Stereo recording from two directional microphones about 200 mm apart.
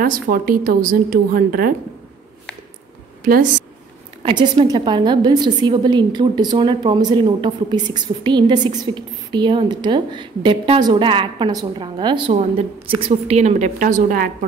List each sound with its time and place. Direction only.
0.0 s a woman's voice: 45° right (ahead or behind)
4.2 s a woman's voice: 25° right (ahead or behind); by 14.3 s 45° right (ahead or behind)